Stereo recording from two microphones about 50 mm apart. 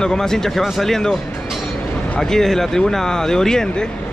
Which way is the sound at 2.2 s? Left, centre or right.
Centre.